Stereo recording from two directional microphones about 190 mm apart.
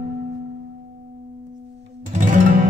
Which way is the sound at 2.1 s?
40° right (ahead or behind).